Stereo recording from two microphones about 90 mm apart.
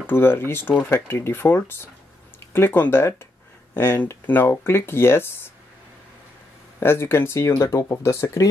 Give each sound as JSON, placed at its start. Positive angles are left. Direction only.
{"t": 0.0, "sound": "speech", "side_deg": 25}
{"t": 6.8, "sound": "speech", "side_deg": 25}